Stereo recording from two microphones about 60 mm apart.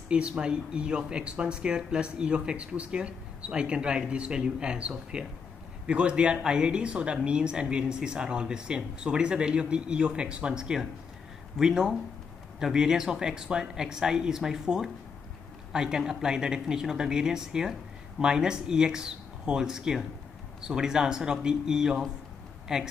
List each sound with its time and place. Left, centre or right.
0.1 s speech: centre